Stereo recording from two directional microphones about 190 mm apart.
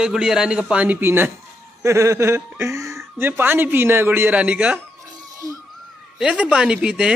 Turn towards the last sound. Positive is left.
turn(degrees=-5)  # may be behind; listen again after turning